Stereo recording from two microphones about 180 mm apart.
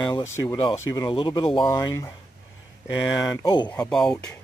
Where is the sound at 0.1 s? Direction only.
15° left (ahead or behind).